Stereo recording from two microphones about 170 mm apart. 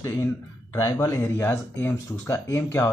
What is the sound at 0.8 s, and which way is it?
Speech, 15° left (ahead or behind).